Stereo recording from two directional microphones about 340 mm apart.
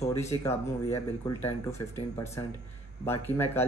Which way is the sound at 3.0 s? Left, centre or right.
Centre.